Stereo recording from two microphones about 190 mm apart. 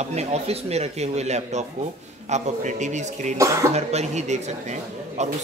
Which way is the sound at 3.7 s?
35° right (ahead or behind).